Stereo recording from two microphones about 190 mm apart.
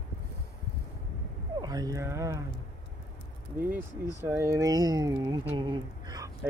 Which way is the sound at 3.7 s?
10° right (ahead or behind).